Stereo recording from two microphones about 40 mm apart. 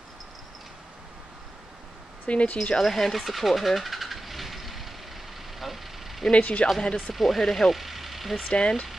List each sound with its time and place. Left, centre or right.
2.2 s speech: left
2.8 s vehicle: centre
6.3 s speech: left
7.1 s speech: centre
8.5 s speech: left